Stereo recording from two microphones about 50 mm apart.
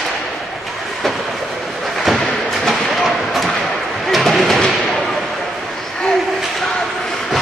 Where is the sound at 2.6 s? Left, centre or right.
Centre.